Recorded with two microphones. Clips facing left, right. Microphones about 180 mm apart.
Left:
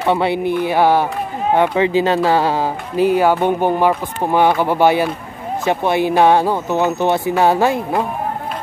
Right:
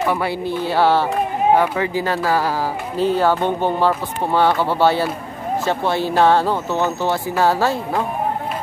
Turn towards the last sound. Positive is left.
turn(degrees=15)  # may be behind; listen again after turning